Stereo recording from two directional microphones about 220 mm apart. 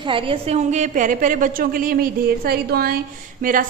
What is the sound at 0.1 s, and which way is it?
A woman's voice, 25° right (ahead or behind).